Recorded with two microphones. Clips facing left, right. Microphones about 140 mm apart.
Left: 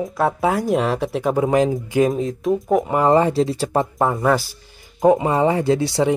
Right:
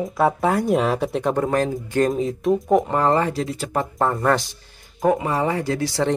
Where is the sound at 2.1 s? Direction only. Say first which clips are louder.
Even; centre (ahead or behind).